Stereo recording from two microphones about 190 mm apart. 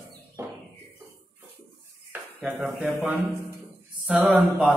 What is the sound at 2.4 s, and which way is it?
Speech, 10° right (ahead or behind).